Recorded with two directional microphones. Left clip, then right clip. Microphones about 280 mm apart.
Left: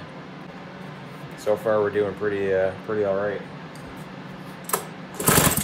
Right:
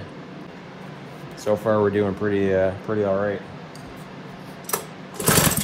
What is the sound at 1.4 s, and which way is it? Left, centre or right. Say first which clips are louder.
Speech: right 1 dB; centre.